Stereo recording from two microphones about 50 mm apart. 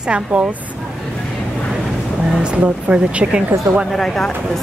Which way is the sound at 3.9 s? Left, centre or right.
Centre.